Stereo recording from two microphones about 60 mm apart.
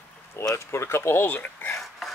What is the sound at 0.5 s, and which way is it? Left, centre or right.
Speech, left.